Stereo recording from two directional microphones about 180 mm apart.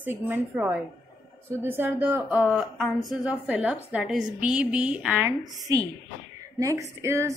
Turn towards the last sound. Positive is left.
turn(degrees=-15)  # may be behind; listen again after turning